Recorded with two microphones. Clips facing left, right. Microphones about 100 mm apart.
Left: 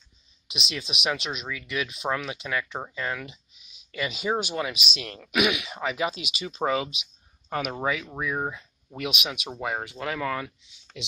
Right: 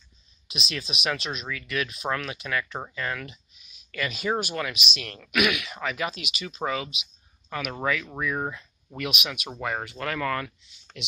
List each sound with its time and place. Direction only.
0.5 s speech: 20° left (ahead or behind)
7.8 s speech: 15° left (ahead or behind)